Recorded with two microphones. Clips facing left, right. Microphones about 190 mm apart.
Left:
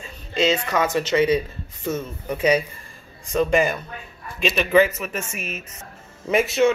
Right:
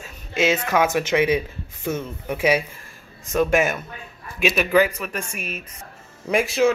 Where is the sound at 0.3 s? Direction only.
10° right (ahead or behind).